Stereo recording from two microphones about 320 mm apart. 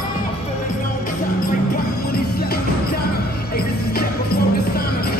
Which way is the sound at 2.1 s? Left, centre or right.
Left.